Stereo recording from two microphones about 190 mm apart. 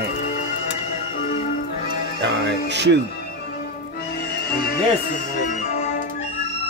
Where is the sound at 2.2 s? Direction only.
65° right (ahead or behind).